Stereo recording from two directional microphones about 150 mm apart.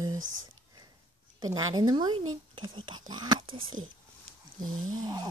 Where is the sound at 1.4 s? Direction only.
25° right (ahead or behind).